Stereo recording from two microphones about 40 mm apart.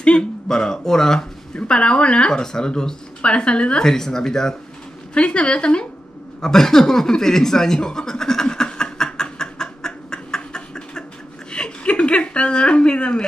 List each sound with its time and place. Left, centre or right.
0.0 s speech: left
1.5 s speech: left
3.8 s speech: centre
5.1 s speech: left
6.4 s chuckle: centre